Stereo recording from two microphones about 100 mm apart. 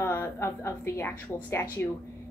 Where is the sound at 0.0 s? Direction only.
25° left (ahead or behind).